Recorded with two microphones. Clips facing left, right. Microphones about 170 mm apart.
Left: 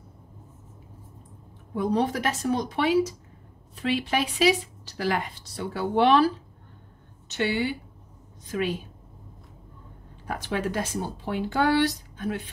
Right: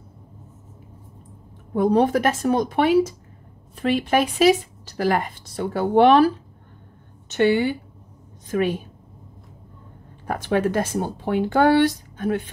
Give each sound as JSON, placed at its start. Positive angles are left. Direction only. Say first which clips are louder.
{"t": 1.7, "sound": "speech", "louder": "right 7 dB", "side_deg": -55}
{"t": 10.2, "sound": "speech", "louder": "right 7 dB", "side_deg": -50}